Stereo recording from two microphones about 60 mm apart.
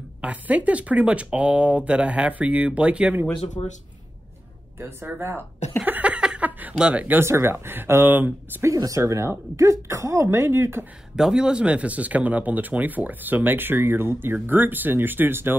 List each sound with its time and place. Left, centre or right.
0.2 s speech: right
4.7 s speech: right
5.9 s a sound: right
6.8 s speech: right
7.2 s speech: right
8.6 s speech: right
9.0 s speech: right
11.1 s speech: centre; by 15.5 s right